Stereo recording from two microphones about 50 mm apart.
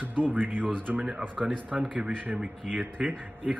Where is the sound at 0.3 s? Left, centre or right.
Right.